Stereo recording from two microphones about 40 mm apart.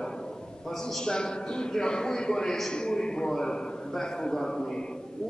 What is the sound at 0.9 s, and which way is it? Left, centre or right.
A man's voice, centre.